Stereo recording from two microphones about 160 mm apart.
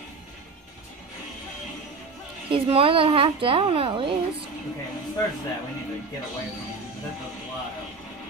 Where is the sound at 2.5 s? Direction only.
35° right (ahead or behind).